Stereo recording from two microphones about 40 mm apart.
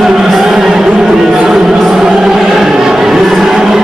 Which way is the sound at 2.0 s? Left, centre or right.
Centre.